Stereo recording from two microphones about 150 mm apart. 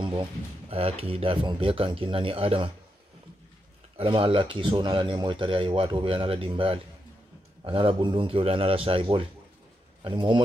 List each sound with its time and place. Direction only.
0.0 s speech: 35° right (ahead or behind)
3.9 s speech: 35° right (ahead or behind)